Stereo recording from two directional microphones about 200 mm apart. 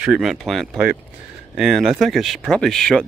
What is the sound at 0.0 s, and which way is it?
Speech, centre (ahead or behind).